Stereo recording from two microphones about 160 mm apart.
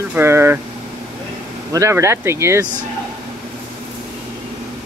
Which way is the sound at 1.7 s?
15° right (ahead or behind).